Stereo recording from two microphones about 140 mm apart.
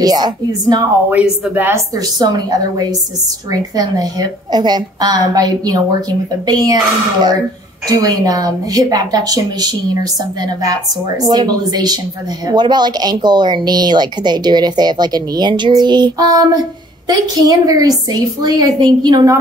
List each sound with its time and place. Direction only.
0.0 s a woman's voice: 25° right (ahead or behind)
1.4 s speech: 15° right (ahead or behind)
2.1 s a woman's voice: 30° right (ahead or behind)
7.9 s a woman's voice: 25° right (ahead or behind)